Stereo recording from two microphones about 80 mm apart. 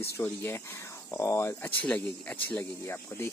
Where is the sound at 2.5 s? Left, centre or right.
Left.